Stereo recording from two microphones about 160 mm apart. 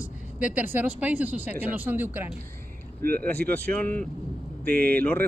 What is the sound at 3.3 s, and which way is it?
Speech, 10° left (ahead or behind).